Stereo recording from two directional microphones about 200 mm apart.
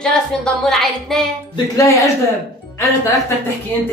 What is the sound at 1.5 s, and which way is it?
Speech, 15° left (ahead or behind).